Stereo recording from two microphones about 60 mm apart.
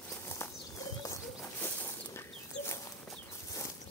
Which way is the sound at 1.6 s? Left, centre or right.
Left.